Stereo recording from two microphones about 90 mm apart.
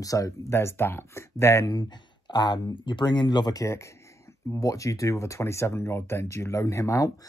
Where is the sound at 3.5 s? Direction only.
35° left (ahead or behind).